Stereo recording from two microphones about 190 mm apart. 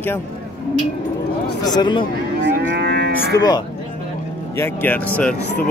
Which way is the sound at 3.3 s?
15° left (ahead or behind).